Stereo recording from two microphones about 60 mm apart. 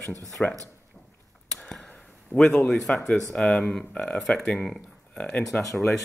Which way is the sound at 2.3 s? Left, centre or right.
Left.